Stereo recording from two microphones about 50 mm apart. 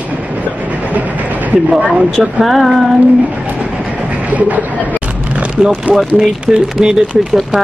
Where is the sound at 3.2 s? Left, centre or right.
Right.